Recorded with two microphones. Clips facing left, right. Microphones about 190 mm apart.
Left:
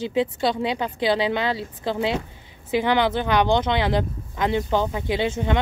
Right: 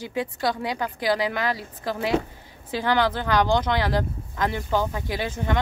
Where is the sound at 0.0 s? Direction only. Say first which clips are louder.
Left 4 dB; 25° left (ahead or behind).